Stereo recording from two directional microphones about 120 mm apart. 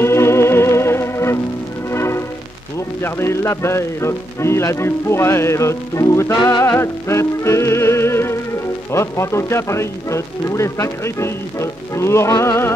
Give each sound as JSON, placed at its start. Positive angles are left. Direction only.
{"t": 0.0, "sound": "music", "side_deg": 20}
{"t": 3.0, "sound": "speech", "side_deg": 20}